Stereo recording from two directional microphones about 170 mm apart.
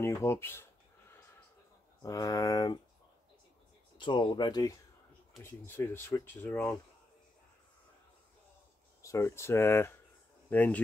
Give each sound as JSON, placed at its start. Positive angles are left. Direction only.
{"t": 0.0, "sound": "speech", "side_deg": 15}
{"t": 2.0, "sound": "speech", "side_deg": 20}
{"t": 4.0, "sound": "speech", "side_deg": 25}
{"t": 9.0, "sound": "speech", "side_deg": 15}